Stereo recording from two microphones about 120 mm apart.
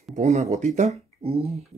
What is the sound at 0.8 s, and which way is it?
Speech, 65° right (ahead or behind).